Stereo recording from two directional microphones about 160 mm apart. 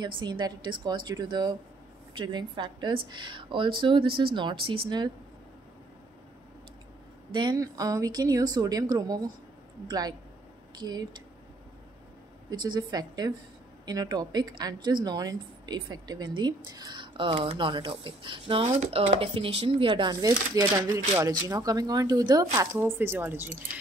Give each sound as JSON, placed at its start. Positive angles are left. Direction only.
{"t": 0.2, "sound": "speech", "side_deg": -30}
{"t": 7.3, "sound": "speech", "side_deg": -25}
{"t": 12.4, "sound": "speech", "side_deg": -25}
{"t": 18.7, "sound": "speech", "side_deg": -45}